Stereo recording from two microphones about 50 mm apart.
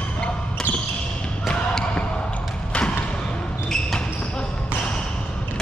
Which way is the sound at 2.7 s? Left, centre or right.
Centre.